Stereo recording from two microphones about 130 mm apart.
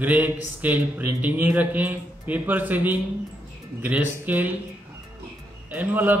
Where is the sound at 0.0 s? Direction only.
10° right (ahead or behind).